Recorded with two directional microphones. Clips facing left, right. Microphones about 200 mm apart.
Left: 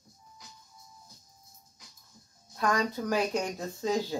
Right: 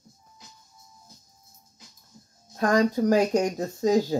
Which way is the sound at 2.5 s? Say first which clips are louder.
Right 7 dB; 45° right (ahead or behind).